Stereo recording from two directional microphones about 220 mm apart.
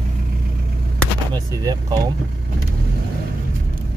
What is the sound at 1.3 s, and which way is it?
Speech, 20° right (ahead or behind).